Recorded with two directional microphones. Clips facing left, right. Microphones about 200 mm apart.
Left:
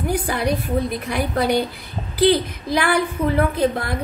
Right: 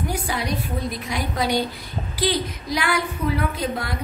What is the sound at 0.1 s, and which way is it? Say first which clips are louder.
A woman's voice: left 5 dB; 55° left (ahead or behind).